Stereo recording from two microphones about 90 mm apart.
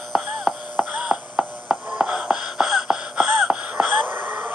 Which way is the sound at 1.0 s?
10° right (ahead or behind).